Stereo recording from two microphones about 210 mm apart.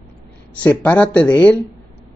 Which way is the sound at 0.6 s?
5° left (ahead or behind).